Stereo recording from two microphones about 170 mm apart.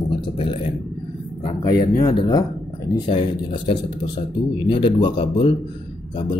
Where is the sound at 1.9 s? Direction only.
25° left (ahead or behind).